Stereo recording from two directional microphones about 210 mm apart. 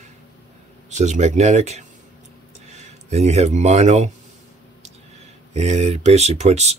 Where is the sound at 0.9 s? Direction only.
35° right (ahead or behind).